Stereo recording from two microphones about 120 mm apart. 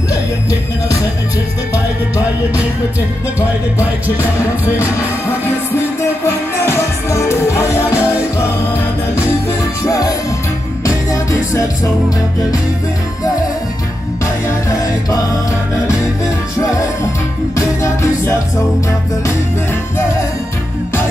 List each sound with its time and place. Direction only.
6.2 s music: 20° left (ahead or behind)
11.1 s music: 25° left (ahead or behind)
14.2 s music: 30° left (ahead or behind)
16.6 s music: 25° left (ahead or behind)